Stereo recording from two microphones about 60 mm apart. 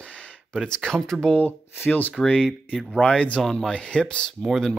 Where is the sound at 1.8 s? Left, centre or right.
Left.